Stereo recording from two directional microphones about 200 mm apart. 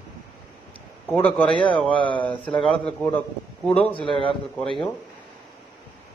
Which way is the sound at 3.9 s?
25° left (ahead or behind).